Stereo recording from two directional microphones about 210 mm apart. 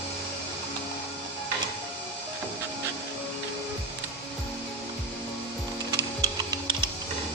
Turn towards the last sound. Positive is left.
turn(degrees=-20)  # may be behind; listen again after turning